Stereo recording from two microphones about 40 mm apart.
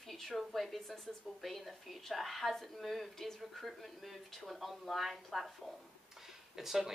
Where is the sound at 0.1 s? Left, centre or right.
Centre.